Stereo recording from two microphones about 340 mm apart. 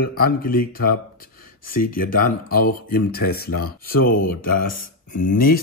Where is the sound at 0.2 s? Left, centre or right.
Left.